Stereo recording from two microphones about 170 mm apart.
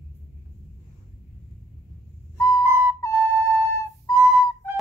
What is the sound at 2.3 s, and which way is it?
Whistle, 15° left (ahead or behind).